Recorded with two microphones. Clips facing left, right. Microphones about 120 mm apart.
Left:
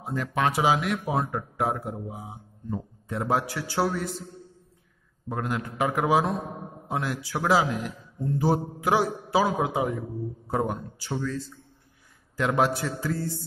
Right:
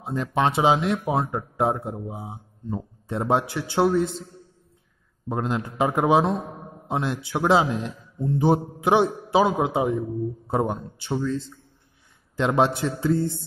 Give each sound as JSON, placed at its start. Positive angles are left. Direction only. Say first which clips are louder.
{"t": 0.0, "sound": "a man's voice", "louder": "right 3 dB", "side_deg": -25}
{"t": 5.3, "sound": "a man's voice", "louder": "right 3 dB", "side_deg": -25}